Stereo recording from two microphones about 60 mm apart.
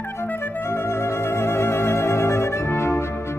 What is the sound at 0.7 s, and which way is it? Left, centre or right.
Music, left.